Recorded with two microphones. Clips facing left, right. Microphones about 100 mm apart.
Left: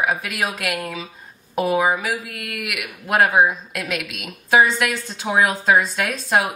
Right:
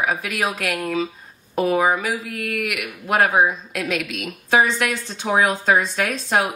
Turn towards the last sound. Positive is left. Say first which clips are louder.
# even
turn(degrees=0)  # may be behind; listen again after turning